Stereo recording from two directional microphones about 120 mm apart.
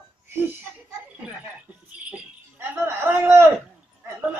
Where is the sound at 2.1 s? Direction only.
15° right (ahead or behind).